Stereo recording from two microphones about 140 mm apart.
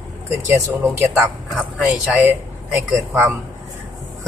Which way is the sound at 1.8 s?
10° right (ahead or behind).